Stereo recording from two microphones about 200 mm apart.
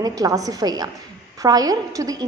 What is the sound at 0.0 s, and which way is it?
A woman's voice, 20° right (ahead or behind).